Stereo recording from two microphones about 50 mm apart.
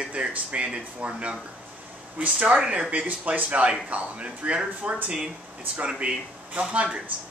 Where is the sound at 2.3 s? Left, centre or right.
Centre.